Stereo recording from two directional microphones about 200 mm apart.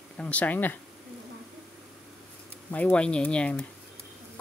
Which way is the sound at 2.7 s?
5° left (ahead or behind).